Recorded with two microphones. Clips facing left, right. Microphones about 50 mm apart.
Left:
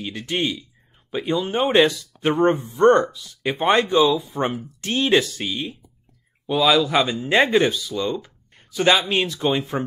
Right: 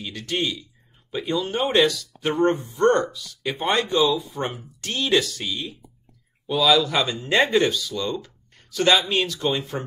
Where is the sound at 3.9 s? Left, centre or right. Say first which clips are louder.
Left 3 dB; centre.